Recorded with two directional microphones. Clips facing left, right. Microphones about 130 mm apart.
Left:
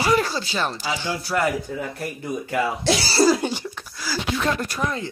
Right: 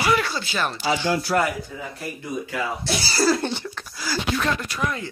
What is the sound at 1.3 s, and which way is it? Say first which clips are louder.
Speech: right 1 dB; 60° right (ahead or behind).